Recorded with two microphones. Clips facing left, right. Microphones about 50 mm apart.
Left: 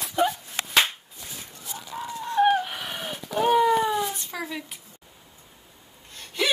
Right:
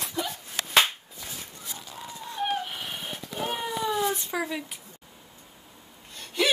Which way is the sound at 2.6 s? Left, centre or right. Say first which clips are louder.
Left 3 dB; left.